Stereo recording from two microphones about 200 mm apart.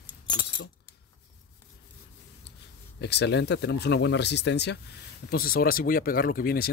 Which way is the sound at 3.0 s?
55° left (ahead or behind).